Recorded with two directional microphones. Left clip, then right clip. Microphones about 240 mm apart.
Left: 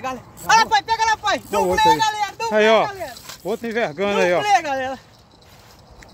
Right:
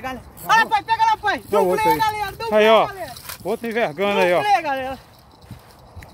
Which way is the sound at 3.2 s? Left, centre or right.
Centre.